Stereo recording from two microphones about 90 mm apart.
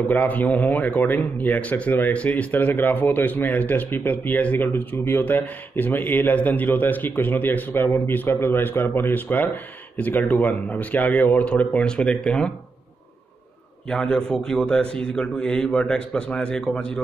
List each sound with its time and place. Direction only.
0.1 s a man's voice: 20° left (ahead or behind)
13.8 s a man's voice: 10° left (ahead or behind)